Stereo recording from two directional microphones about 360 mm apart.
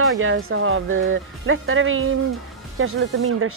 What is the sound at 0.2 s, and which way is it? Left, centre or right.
Speech, right.